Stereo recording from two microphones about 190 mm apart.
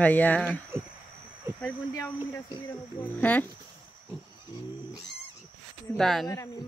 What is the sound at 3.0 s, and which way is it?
Speech, 10° left (ahead or behind).